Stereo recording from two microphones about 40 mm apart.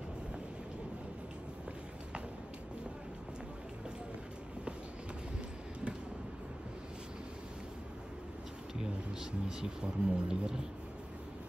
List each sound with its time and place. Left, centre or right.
9.2 s speech: centre